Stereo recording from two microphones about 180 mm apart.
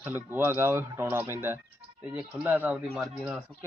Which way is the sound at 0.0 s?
10° right (ahead or behind).